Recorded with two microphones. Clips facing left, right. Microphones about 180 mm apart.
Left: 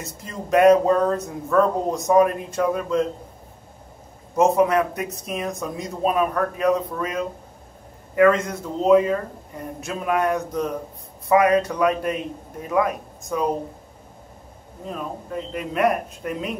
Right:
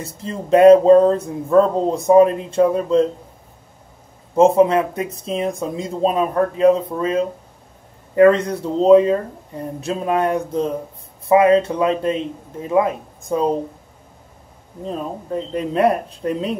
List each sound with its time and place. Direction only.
0.0 s speech: 30° right (ahead or behind)
4.4 s speech: 25° right (ahead or behind)
14.9 s speech: 30° right (ahead or behind)